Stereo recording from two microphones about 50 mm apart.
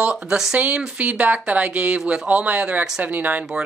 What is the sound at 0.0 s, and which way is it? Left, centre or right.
Speech, right.